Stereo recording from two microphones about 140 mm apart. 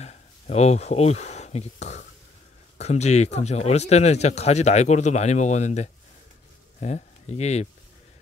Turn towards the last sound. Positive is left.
turn(degrees=50)  # may be behind; listen again after turning